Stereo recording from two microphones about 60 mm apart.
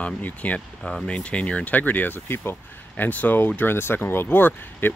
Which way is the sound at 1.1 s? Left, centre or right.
Centre.